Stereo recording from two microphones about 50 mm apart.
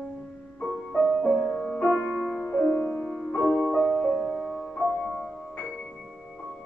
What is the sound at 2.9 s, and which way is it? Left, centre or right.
Music, centre.